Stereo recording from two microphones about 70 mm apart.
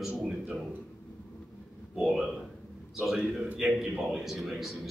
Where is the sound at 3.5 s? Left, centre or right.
Centre.